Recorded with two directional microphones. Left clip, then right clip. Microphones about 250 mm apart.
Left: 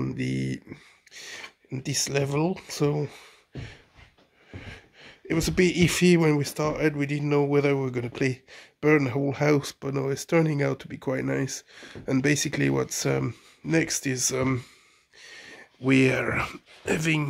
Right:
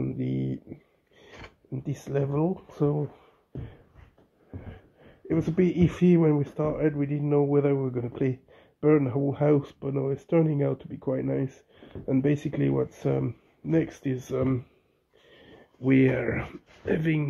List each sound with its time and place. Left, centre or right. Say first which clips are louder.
0.0 s a sound: left 1 dB; centre
1.2 s speech: left 6 dB; left
5.0 s speech: left 1 dB; centre